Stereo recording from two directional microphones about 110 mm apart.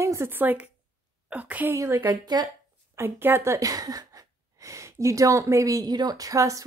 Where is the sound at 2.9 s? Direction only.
20° right (ahead or behind).